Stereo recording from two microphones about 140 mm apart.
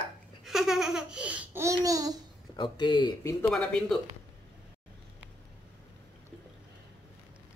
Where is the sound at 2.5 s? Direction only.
30° left (ahead or behind).